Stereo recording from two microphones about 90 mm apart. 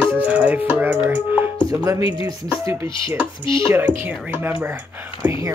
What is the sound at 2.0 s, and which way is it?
Speech, 70° left (ahead or behind).